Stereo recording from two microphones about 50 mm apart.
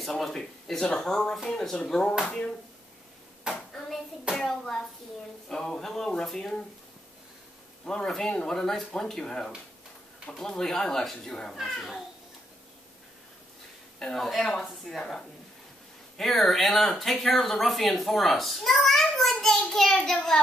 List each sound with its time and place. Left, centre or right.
0.0 s speech: centre
3.5 s hands: centre
4.4 s speech: centre
7.8 s speech: centre
13.9 s speech: centre
16.2 s speech: centre